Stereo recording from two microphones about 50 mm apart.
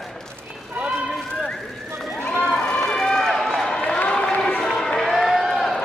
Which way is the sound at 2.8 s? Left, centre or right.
Centre.